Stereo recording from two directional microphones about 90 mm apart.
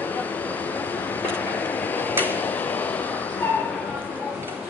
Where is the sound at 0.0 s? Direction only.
20° left (ahead or behind).